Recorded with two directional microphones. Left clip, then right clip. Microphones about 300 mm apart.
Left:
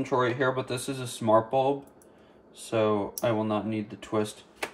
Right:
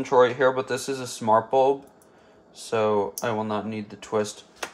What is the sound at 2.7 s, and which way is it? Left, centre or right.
Speech, centre.